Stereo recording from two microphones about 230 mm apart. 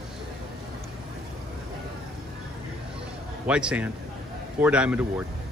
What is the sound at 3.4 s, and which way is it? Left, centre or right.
A man's voice, centre.